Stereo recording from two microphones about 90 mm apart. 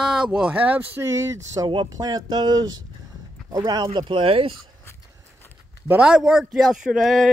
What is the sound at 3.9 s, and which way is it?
Speech, 70° right (ahead or behind).